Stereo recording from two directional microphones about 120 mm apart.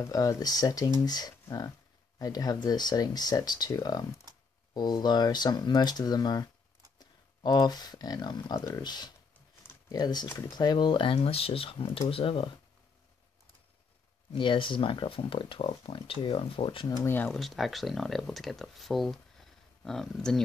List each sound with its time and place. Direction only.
0.0 s speech: 25° left (ahead or behind); by 12.4 s 50° left (ahead or behind)
14.3 s speech: 45° left (ahead or behind)
16.8 s speech: 25° left (ahead or behind)
17.4 s speech: centre (ahead or behind)